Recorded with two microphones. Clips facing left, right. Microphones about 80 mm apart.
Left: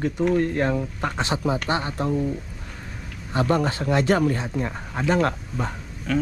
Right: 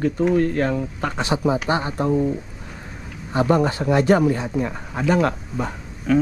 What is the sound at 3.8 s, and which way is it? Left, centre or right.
Speech, right.